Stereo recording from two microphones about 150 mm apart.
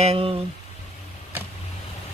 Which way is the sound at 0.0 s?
40° right (ahead or behind).